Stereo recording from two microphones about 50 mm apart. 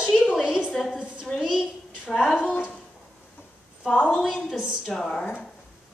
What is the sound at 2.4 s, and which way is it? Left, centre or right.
Speech, left.